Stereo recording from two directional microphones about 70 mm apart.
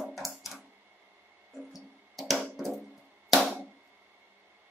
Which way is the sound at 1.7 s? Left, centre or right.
Centre.